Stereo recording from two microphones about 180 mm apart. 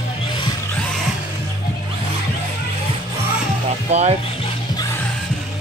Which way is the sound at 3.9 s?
35° right (ahead or behind).